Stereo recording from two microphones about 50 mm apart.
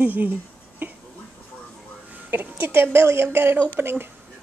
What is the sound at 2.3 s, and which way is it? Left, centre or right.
A woman's voice, right.